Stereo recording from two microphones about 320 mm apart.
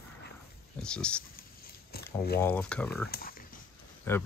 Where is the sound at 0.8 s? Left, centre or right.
Centre.